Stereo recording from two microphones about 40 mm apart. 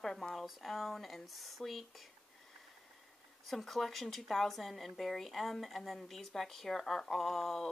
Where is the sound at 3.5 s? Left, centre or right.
Centre.